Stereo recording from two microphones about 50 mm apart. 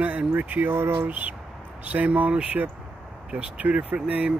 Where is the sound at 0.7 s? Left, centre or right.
Right.